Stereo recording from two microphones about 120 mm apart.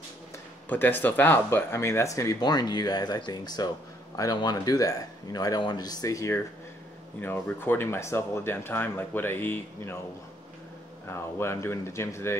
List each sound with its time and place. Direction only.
0.7 s speech: 15° left (ahead or behind)
11.1 s speech: 20° left (ahead or behind)